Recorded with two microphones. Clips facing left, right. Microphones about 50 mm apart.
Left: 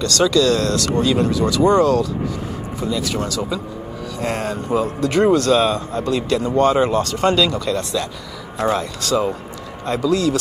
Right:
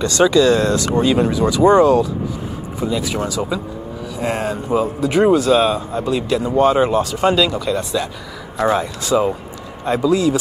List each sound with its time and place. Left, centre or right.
0.0 s a man's voice: centre